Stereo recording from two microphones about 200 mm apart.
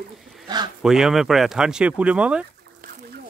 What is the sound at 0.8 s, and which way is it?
Speech, centre (ahead or behind).